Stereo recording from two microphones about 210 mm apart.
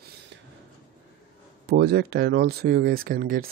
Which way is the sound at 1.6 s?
50° right (ahead or behind).